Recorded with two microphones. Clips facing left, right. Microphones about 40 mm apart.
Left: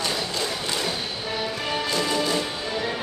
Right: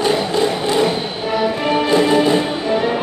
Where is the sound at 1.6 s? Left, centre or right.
Right.